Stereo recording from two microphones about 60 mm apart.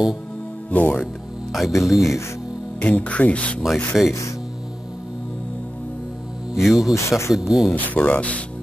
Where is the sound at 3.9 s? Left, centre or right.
Centre.